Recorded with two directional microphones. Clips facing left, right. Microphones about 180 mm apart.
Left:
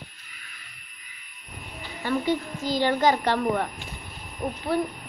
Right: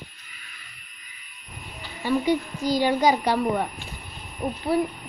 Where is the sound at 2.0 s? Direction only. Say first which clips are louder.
Right 3 dB; 15° right (ahead or behind).